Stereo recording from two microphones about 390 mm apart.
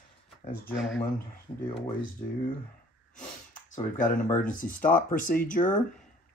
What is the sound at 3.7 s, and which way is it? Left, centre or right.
Speech, centre.